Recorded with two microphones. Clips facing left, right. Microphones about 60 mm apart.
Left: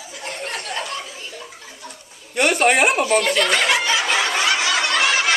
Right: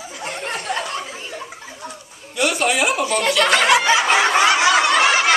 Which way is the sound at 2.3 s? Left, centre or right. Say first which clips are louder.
Left 3 dB; left.